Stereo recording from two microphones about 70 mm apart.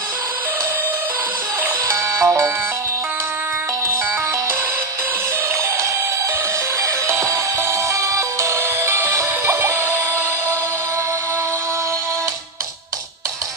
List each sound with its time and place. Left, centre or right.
2.1 s music: right
6.8 s music: right